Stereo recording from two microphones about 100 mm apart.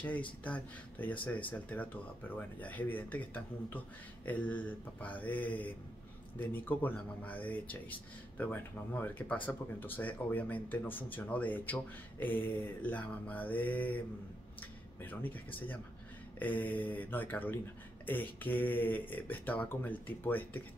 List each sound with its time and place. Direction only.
0.0 s speech: 15° left (ahead or behind)
15.0 s speech: 20° left (ahead or behind)